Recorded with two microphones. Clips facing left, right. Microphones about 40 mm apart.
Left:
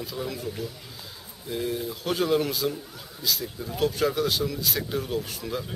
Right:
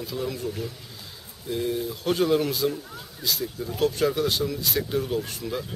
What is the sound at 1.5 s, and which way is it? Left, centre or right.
Speech, centre.